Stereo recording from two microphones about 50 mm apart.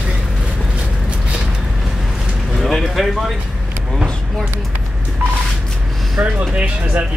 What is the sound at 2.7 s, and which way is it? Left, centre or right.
Speech, centre.